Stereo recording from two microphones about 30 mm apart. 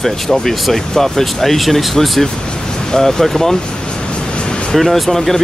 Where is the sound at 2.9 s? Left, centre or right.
Centre.